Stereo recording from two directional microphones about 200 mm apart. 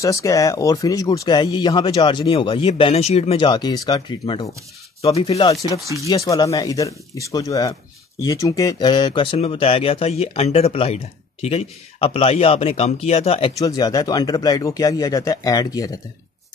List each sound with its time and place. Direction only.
0.0 s speech: 15° left (ahead or behind)
13.6 s speech: 20° left (ahead or behind)